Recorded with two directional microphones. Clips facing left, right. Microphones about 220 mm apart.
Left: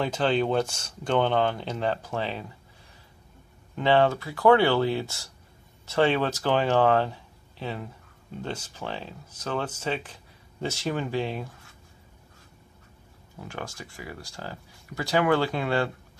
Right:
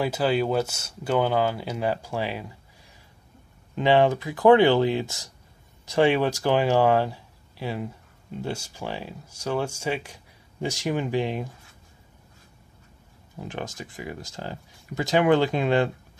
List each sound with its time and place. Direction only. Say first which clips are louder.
0.0 s speech: right 1 dB; 10° right (ahead or behind)
3.7 s speech: right 2 dB; 15° right (ahead or behind)
13.4 s speech: right 4 dB; 20° right (ahead or behind)